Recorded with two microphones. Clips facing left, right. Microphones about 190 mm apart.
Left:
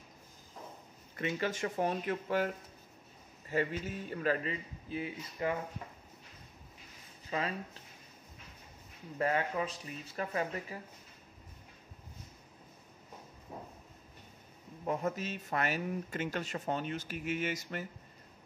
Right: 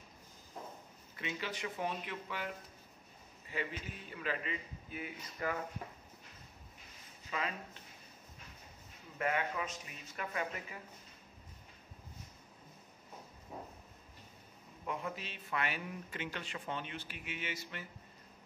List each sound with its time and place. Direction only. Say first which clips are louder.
1.1 s a man's voice: left 7 dB; 45° left (ahead or behind); by 5.6 s 25° left (ahead or behind)
7.2 s speech: left 4 dB; 35° left (ahead or behind)
9.2 s a man's voice: left 4 dB; 35° left (ahead or behind)
14.9 s speech: left 7 dB; 45° left (ahead or behind)